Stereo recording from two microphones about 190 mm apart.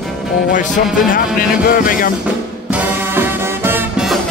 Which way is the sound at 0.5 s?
45° left (ahead or behind).